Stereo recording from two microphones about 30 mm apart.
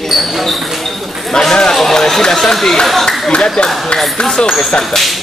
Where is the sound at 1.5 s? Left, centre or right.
Left.